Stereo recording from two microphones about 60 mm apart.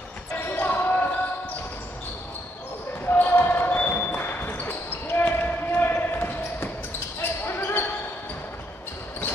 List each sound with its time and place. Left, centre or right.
0.6 s basketball bounce: left
3.1 s basketball bounce: left